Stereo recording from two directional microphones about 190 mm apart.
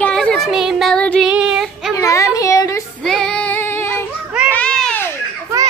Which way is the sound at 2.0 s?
15° left (ahead or behind).